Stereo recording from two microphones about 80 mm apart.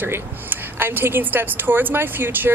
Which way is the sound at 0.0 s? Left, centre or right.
Right.